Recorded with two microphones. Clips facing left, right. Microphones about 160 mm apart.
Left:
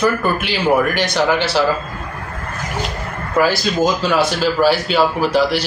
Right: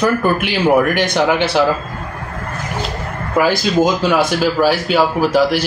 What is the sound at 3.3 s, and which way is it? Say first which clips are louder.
A man's voice: right 2 dB; 15° right (ahead or behind).